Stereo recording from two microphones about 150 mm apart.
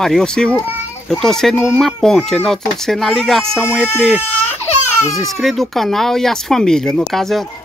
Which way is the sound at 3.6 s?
15° left (ahead or behind).